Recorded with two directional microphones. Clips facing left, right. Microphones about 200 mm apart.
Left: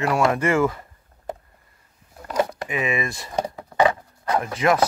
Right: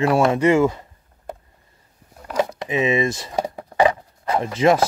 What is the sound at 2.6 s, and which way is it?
Speech, 25° right (ahead or behind).